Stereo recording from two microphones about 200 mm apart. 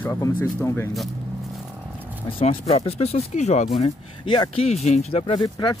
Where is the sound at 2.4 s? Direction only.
30° left (ahead or behind).